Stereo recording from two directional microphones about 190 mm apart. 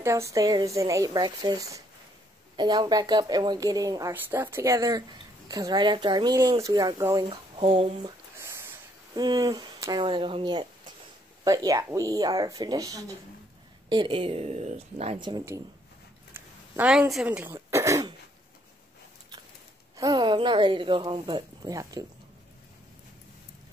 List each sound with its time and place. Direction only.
0.0 s speech: 15° right (ahead or behind)
8.4 s snort: 15° right (ahead or behind)
9.1 s speech: 20° right (ahead or behind)
16.3 s throat clearing: 10° right (ahead or behind)
20.0 s speech: 20° right (ahead or behind)